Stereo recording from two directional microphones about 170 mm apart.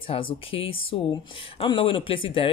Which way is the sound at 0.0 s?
30° left (ahead or behind).